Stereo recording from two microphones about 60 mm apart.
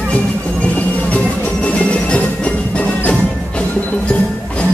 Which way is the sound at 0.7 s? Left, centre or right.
Left.